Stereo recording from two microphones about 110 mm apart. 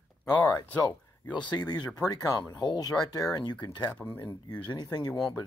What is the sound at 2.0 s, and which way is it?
Speech, 35° left (ahead or behind).